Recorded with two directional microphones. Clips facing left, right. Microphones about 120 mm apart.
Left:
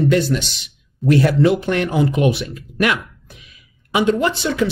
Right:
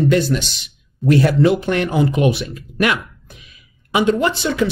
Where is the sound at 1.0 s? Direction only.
30° right (ahead or behind).